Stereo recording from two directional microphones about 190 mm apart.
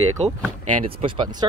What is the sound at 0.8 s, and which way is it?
Speech, 25° right (ahead or behind).